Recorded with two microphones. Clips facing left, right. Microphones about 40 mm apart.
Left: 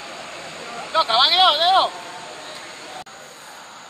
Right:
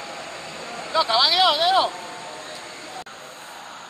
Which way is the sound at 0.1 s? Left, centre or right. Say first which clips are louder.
Even; left.